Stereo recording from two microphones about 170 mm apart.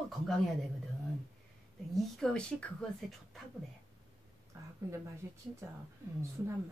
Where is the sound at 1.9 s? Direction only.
5° left (ahead or behind).